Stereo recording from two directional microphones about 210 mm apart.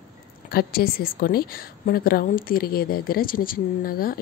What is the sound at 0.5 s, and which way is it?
A woman's voice, 45° left (ahead or behind).